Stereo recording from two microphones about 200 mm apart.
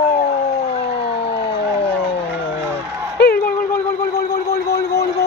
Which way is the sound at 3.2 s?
50° left (ahead or behind).